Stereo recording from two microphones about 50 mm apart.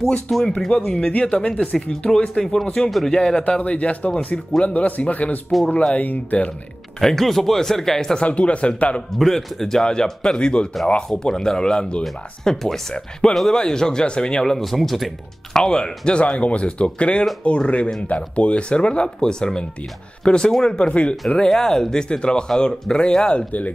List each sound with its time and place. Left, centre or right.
0.6 s speech: centre
1.2 s speech: left
1.5 s speech: centre; by 6.5 s left
7.0 s speech: centre
8.2 s speech: left
9.2 s speech: centre
14.4 s speech: centre
15.5 s speech: centre
21.5 s speech: centre